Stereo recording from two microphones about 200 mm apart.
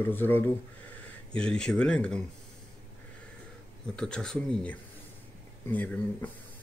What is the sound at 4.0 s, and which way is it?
Speech, 5° left (ahead or behind).